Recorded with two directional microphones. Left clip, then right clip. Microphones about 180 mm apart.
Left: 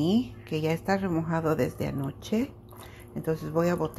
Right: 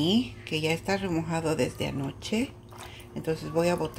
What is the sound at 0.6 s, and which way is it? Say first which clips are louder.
Speech: left 1 dB; 10° left (ahead or behind).